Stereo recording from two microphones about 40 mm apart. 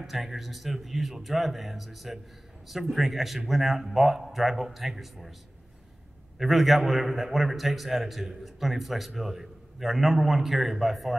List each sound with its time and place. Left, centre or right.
0.0 s a man's voice: centre
6.3 s a man's voice: centre